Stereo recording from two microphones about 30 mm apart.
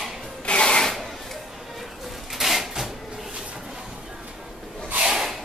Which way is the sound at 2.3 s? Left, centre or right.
Centre.